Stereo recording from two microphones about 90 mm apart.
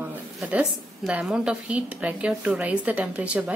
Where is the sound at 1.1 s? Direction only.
10° right (ahead or behind).